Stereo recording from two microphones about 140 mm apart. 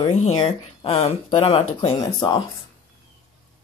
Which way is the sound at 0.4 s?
45° left (ahead or behind).